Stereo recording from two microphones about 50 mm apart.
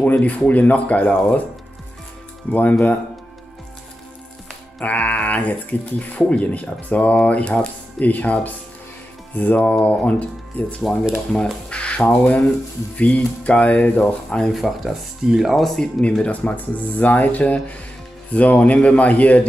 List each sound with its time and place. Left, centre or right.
0.0 s speech: left
2.5 s speech: left
4.7 s speech: left
6.4 s speech: left
14.5 s speech: centre
15.6 s speech: centre
16.0 s speech: left
16.4 s speech: left